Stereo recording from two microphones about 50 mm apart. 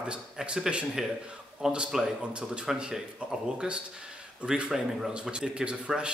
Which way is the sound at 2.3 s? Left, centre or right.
Centre.